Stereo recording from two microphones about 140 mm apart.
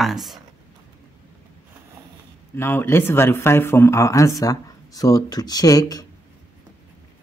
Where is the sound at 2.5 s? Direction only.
15° left (ahead or behind).